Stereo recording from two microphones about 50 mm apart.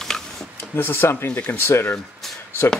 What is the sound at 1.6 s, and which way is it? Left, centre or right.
Speech, left.